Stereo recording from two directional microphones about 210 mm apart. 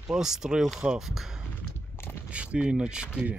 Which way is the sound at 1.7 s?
10° left (ahead or behind).